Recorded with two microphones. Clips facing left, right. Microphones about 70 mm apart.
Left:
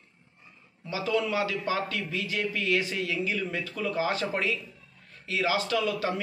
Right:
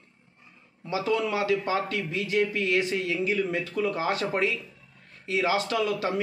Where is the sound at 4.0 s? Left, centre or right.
Right.